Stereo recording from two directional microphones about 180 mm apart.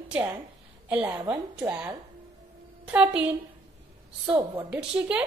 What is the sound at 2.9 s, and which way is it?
Speech, 5° right (ahead or behind).